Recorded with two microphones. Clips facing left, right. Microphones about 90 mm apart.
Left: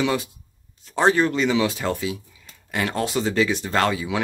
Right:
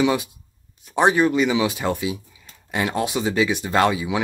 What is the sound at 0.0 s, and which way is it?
Speech, 15° right (ahead or behind).